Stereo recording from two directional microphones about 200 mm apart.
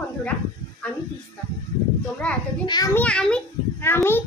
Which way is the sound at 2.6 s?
20° left (ahead or behind).